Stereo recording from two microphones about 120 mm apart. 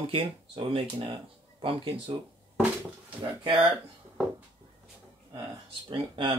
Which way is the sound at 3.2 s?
50° right (ahead or behind).